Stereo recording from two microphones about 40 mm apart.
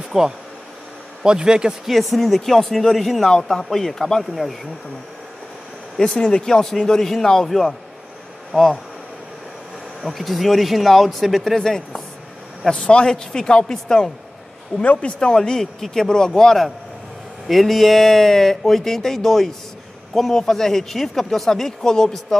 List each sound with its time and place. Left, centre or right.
0.1 s speech: centre
1.9 s speech: centre
5.9 s speech: centre
10.0 s speech: centre
11.5 s speech: centre
12.7 s speech: left
14.8 s speech: left; by 22.1 s centre